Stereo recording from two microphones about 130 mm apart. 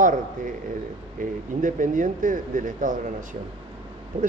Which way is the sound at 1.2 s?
90° right.